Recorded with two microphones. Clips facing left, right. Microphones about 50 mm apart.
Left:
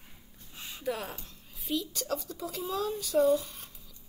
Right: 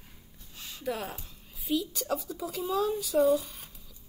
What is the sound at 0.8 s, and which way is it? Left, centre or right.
Speech, centre.